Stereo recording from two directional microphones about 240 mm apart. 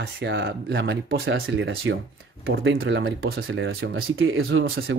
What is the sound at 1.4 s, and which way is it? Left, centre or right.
Speech, right.